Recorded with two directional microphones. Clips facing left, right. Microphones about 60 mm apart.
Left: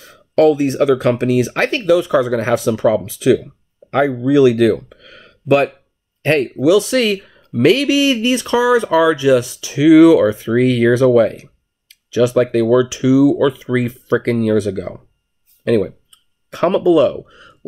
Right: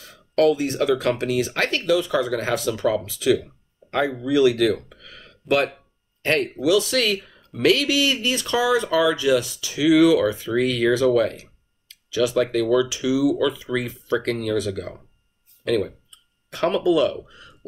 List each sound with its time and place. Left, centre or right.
0.1 s speech: left
4.8 s a sound: left
6.3 s speech: left